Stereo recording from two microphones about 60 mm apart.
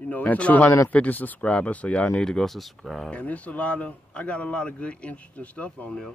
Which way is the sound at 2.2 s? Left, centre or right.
Centre.